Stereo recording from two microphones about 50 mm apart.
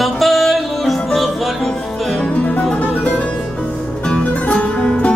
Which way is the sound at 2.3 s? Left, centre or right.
Left.